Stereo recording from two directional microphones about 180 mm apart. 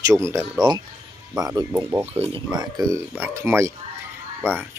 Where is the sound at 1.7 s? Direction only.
10° right (ahead or behind).